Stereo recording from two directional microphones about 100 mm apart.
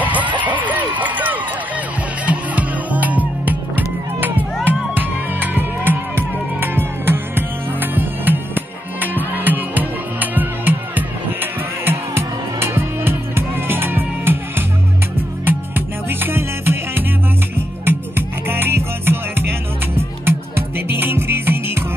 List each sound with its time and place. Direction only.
0.0 s run: 15° right (ahead or behind)
2.2 s music: 15° right (ahead or behind)